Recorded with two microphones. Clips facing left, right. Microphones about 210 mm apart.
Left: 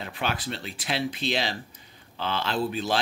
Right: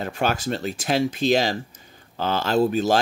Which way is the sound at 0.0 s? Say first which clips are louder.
Right 7 dB; 45° right (ahead or behind).